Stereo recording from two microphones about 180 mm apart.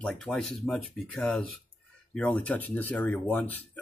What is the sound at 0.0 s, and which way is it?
Speech, 5° left (ahead or behind).